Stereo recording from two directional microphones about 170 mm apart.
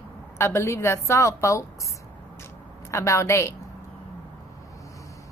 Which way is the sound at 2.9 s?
15° left (ahead or behind).